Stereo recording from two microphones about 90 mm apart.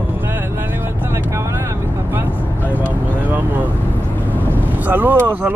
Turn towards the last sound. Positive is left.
turn(degrees=-20)  # may be behind; listen again after turning